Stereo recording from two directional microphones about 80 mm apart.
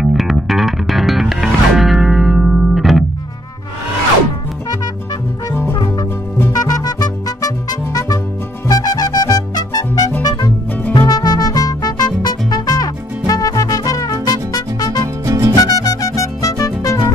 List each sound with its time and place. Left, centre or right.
0.0 s music: centre
5.8 s music: left
15.2 s music: right
15.5 s music: left